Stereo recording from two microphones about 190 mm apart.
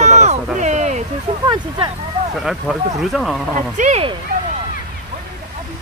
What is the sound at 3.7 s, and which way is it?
Speech, 40° right (ahead or behind).